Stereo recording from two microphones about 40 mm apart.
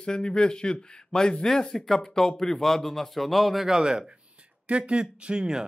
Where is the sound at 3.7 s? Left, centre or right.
Centre.